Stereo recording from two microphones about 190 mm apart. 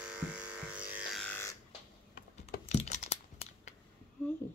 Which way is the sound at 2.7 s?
35° left (ahead or behind).